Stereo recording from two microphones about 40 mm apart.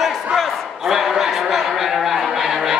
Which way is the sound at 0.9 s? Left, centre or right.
Centre.